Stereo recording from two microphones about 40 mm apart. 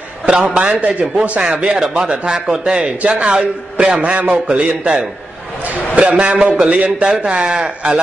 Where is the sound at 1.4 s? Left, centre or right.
Right.